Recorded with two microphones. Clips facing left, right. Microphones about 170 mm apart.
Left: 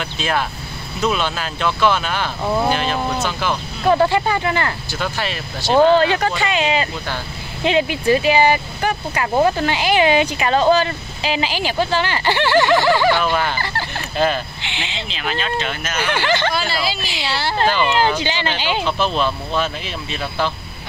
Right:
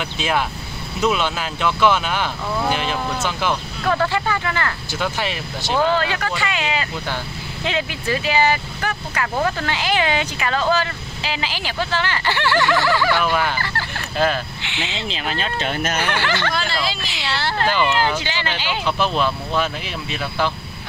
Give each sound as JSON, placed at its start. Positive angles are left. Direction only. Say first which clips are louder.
{"t": 0.0, "sound": "speech", "louder": "even", "side_deg": -15}
{"t": 2.4, "sound": "speech", "louder": "left 8 dB", "side_deg": 25}
{"t": 2.7, "sound": "speech", "louder": "left 2 dB", "side_deg": -15}
{"t": 3.0, "sound": "speech", "louder": "left 3 dB", "side_deg": 15}
{"t": 3.3, "sound": "speech", "louder": "even", "side_deg": -15}
{"t": 3.8, "sound": "speech", "louder": "left 6 dB", "side_deg": 15}
{"t": 4.9, "sound": "speech", "louder": "right 2 dB", "side_deg": -15}
{"t": 5.8, "sound": "speech", "louder": "left 7 dB", "side_deg": 20}
{"t": 13.2, "sound": "speech", "louder": "left 1 dB", "side_deg": -10}
{"t": 15.0, "sound": "speech", "louder": "left 3 dB", "side_deg": -35}
{"t": 16.1, "sound": "speech", "louder": "left 3 dB", "side_deg": 15}
{"t": 16.5, "sound": "speech", "louder": "left 2 dB", "side_deg": 5}
{"t": 17.6, "sound": "speech", "louder": "left 2 dB", "side_deg": 20}
{"t": 18.9, "sound": "speech", "louder": "right 2 dB", "side_deg": -10}